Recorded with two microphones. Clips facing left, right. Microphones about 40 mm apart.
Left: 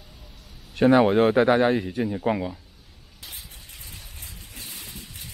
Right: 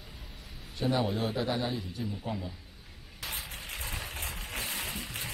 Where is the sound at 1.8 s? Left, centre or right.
Left.